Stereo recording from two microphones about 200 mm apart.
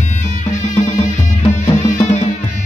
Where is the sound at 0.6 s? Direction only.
35° left (ahead or behind).